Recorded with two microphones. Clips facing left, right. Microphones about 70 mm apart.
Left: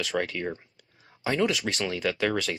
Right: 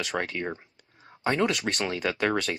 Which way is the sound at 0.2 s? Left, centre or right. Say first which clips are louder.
Left 1 dB; centre.